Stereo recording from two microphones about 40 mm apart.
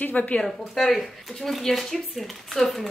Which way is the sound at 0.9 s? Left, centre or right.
Centre.